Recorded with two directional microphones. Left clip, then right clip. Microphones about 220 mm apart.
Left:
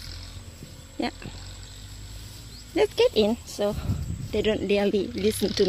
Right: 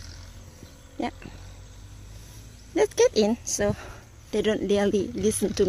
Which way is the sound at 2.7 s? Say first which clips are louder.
Even; 15° right (ahead or behind).